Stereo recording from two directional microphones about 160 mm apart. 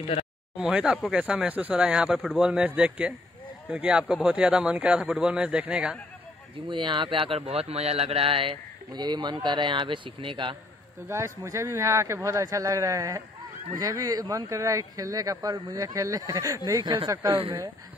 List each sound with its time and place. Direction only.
0.6 s a man's voice: 5° right (ahead or behind)
6.7 s a man's voice: 30° right (ahead or behind)
11.1 s speech: 20° right (ahead or behind)